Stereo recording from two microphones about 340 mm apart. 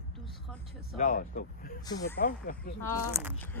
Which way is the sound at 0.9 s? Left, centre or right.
Left.